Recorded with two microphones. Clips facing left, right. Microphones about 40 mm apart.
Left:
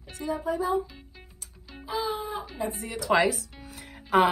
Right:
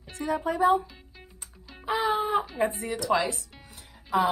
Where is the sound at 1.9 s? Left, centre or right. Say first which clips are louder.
Right 5 dB; right.